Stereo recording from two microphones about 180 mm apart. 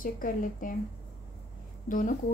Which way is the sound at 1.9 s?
50° left (ahead or behind).